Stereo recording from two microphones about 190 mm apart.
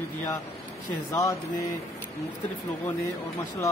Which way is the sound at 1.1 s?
15° left (ahead or behind).